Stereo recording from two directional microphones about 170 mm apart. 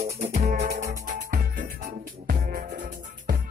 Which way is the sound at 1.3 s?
50° right (ahead or behind).